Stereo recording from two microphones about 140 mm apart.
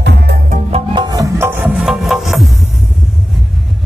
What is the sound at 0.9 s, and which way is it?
Music, 25° right (ahead or behind).